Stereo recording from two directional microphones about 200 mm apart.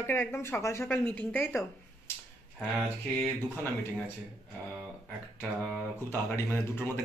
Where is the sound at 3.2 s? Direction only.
10° left (ahead or behind).